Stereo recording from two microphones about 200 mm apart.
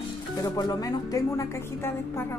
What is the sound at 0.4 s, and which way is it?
A woman's voice, 20° left (ahead or behind).